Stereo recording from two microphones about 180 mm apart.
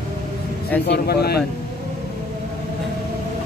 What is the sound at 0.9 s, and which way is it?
Speech, 60° left (ahead or behind).